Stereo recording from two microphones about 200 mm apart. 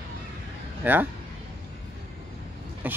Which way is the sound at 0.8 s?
10° right (ahead or behind).